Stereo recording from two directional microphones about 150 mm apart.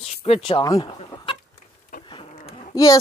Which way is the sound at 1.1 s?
35° left (ahead or behind).